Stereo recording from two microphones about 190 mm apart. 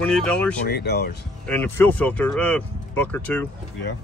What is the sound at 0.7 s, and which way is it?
Speech, 60° left (ahead or behind).